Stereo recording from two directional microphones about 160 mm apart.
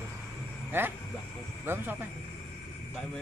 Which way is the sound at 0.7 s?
15° right (ahead or behind).